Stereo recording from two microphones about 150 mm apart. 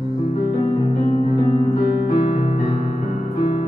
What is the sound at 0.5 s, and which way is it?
Music, 45° left (ahead or behind).